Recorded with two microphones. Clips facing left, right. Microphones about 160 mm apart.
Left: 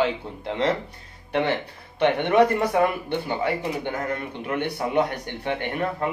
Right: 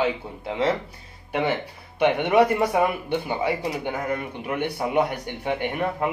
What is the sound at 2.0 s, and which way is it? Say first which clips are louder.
Speech: even; 10° right (ahead or behind).